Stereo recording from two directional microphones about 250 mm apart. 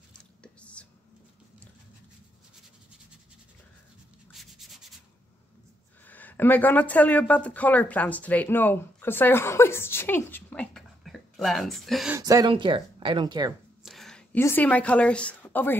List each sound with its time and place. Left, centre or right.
0.4 s whispering: centre
4.3 s sanding: centre
6.0 s speech: centre
12.2 s speech: centre
13.8 s a woman's voice: centre